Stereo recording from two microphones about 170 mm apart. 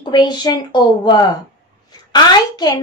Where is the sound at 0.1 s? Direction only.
25° left (ahead or behind).